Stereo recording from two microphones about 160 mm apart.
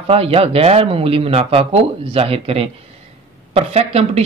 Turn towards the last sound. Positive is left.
turn(degrees=-40)  # may be behind; listen again after turning